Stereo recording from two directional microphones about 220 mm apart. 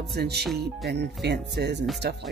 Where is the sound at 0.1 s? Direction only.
45° right (ahead or behind).